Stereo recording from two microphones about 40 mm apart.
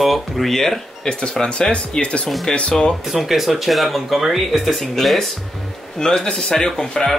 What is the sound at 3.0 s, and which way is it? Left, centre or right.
Speech, centre.